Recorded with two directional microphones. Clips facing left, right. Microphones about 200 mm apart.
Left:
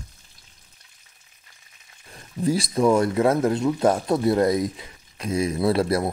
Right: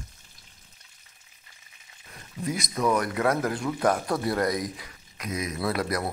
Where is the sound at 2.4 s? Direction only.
30° left (ahead or behind).